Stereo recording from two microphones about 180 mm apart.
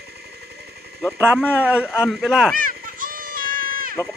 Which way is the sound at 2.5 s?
50° right (ahead or behind).